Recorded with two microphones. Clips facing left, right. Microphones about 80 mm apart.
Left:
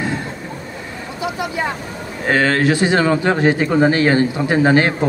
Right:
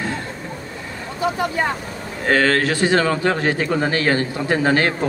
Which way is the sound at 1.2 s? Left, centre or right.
Right.